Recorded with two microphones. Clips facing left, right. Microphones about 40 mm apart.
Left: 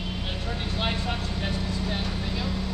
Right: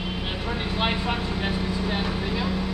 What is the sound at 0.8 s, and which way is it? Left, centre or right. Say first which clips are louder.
Vehicle: right 4 dB; centre.